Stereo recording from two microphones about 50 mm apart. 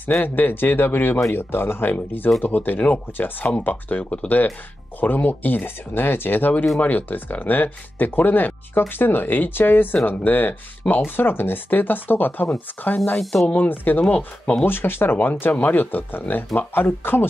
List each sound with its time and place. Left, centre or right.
0.2 s speech: left
5.0 s speech: left
13.2 s speech: centre
13.6 s speech: left
14.0 s speech: left
14.7 s speech: left